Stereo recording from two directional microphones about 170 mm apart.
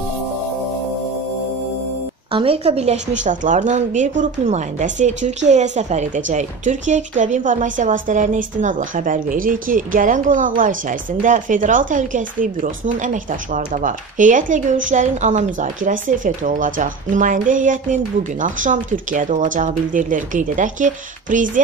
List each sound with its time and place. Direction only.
2.3 s a woman's voice: 35° right (ahead or behind); by 21.5 s 50° right (ahead or behind)